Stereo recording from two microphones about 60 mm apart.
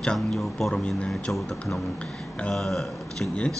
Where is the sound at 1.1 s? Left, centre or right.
Centre.